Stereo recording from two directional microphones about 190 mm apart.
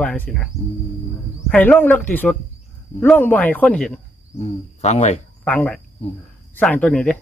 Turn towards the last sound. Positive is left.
turn(degrees=5)  # may be behind; listen again after turning